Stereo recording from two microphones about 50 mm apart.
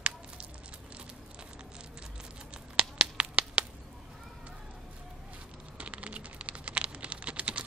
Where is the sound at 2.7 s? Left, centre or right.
Right.